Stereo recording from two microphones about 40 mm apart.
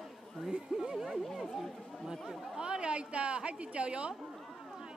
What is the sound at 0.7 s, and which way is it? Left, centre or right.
Speech, right.